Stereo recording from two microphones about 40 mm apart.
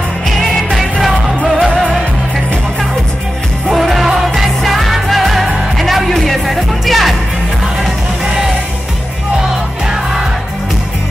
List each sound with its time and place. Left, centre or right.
1.0 s music: centre
3.7 s music: centre
8.3 s music: centre